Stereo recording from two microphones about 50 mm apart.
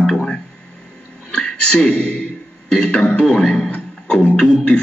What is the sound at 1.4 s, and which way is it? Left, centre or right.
A man's voice, centre.